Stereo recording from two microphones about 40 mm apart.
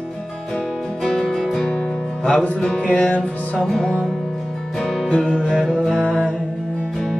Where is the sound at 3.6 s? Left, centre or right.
Centre.